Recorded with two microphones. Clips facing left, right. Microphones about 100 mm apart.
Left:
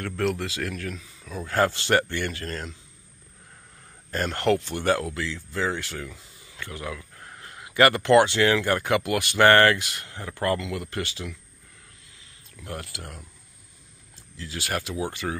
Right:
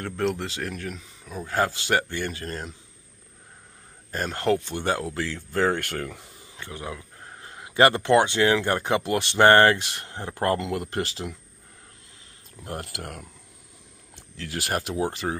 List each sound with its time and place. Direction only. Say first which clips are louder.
0.0 s speech: even; 20° right (ahead or behind)
4.1 s speech: left 1 dB; 15° right (ahead or behind)
5.1 s speech: right 3 dB; 45° right (ahead or behind)
6.5 s speech: left 1 dB; 25° right (ahead or behind); by 11.3 s 40° right (ahead or behind)
12.5 s speech: right 2 dB; 40° right (ahead or behind)
14.1 s a sound: right 3 dB; 65° right (ahead or behind)
14.6 s speech: right 3 dB; 45° right (ahead or behind)